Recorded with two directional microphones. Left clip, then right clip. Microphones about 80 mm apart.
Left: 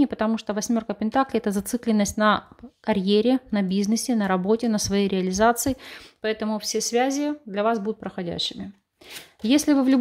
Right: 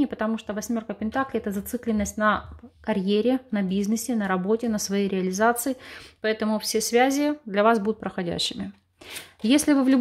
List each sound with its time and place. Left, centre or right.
0.0 s speech: left
2.8 s a woman's voice: centre
4.1 s a woman's voice: left
5.5 s a woman's voice: left
6.2 s speech: centre
9.4 s speech: centre